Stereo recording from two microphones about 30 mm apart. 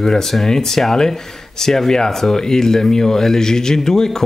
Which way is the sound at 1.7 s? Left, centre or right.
Centre.